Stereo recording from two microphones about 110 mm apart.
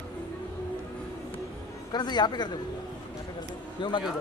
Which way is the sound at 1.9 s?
40° left (ahead or behind).